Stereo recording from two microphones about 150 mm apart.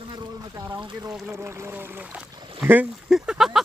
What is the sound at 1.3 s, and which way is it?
Speech, 15° right (ahead or behind).